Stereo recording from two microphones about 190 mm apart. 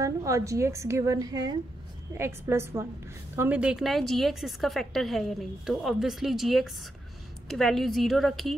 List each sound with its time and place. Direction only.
0.0 s a woman's voice: 15° right (ahead or behind); by 8.5 s centre (ahead or behind)